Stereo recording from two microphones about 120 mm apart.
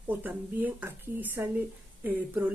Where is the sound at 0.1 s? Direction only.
15° right (ahead or behind).